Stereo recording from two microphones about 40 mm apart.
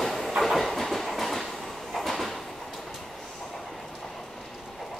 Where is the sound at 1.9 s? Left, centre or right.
Centre.